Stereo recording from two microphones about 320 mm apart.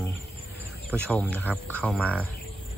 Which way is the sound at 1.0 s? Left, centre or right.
Centre.